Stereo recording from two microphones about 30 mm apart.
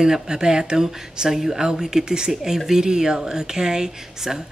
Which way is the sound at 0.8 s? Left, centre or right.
Centre.